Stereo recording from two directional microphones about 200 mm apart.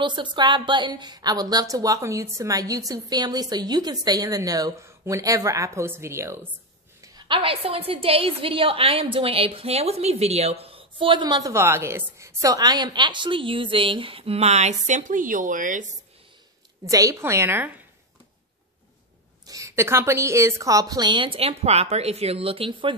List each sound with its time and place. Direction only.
0.0 s a woman's voice: 25° right (ahead or behind); by 16.0 s 40° right (ahead or behind)
16.8 s a woman's voice: 15° right (ahead or behind)
19.4 s a woman's voice: 15° right (ahead or behind)